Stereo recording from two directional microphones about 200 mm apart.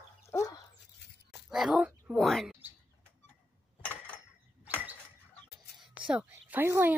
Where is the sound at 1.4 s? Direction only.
Centre (ahead or behind).